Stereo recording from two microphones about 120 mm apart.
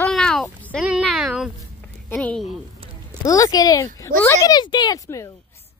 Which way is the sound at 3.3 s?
30° left (ahead or behind).